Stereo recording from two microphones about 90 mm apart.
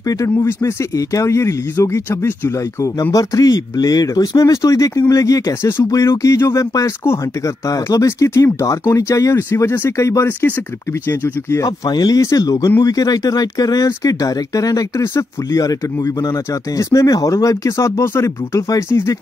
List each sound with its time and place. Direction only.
0.1 s speech: 35° left (ahead or behind)
2.8 s speech: 40° left (ahead or behind)
11.6 s speech: 45° left (ahead or behind); by 19.1 s 30° left (ahead or behind)